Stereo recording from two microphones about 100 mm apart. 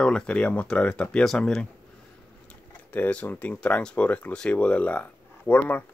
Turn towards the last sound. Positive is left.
turn(degrees=20)  # may be behind; listen again after turning